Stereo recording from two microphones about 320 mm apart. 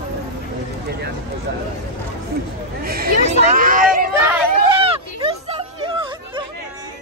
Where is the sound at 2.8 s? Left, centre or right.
Right.